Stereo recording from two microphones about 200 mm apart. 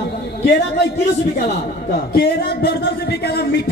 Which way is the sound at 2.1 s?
55° left (ahead or behind).